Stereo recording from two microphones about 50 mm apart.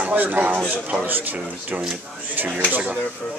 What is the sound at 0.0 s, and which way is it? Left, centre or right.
Speech, right.